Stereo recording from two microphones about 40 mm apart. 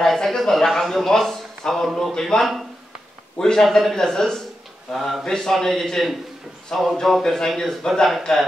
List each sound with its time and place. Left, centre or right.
0.0 s a sound: centre
2.0 s speech: centre
3.6 s speech: centre
3.9 s speech: centre
7.1 s speech: centre